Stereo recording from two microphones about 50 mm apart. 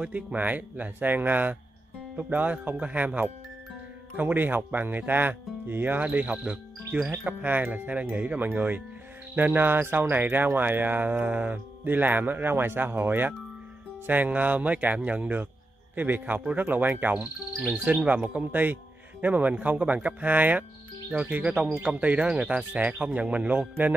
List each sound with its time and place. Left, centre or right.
0.1 s speech: right
6.0 s speech: right
7.2 s speech: right